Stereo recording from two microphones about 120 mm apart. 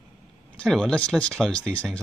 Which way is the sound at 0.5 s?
5° left (ahead or behind).